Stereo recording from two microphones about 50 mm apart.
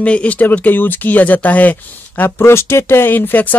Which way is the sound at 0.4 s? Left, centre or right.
Left.